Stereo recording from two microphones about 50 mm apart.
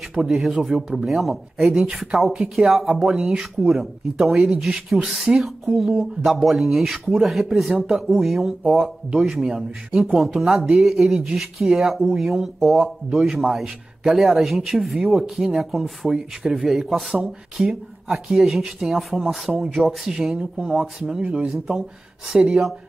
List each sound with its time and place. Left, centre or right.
0.2 s speech: centre
20.3 s speech: right
21.5 s speech: centre